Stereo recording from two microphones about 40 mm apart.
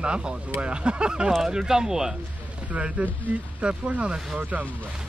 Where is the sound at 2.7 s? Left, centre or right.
Right.